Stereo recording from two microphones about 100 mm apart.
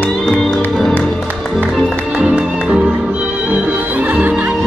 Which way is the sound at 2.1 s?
10° right (ahead or behind).